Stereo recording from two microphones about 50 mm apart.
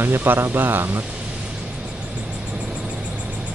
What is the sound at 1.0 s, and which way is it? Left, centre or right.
Vehicle, right.